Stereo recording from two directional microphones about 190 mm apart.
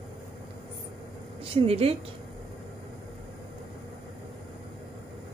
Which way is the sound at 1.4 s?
30° right (ahead or behind).